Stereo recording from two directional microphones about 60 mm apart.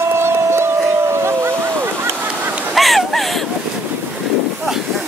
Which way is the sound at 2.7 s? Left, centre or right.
Centre.